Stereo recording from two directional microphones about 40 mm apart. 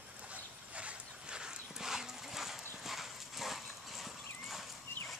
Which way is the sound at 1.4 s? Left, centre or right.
Centre.